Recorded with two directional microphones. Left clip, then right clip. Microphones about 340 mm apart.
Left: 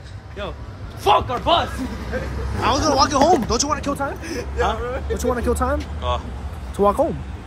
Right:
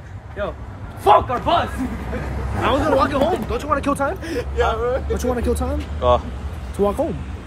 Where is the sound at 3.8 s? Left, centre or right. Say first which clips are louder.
Right 3 dB; centre.